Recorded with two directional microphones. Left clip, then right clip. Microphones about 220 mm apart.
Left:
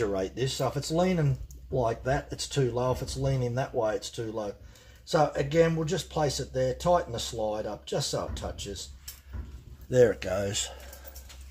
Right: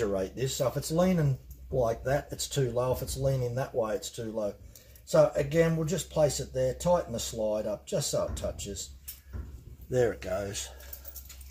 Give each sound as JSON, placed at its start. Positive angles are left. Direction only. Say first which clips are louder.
{"t": 0.1, "sound": "speech", "louder": "left 1 dB", "side_deg": 25}
{"t": 9.8, "sound": "speech", "louder": "left 5 dB", "side_deg": 50}